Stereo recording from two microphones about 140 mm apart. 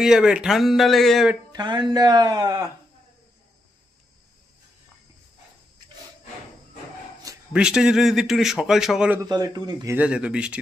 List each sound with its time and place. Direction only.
0.0 s a man's voice: 5° right (ahead or behind)
1.5 s speech: 35° right (ahead or behind)
7.5 s a man's voice: 5° right (ahead or behind)
9.2 s speech: 25° right (ahead or behind)
9.9 s speech: 10° right (ahead or behind)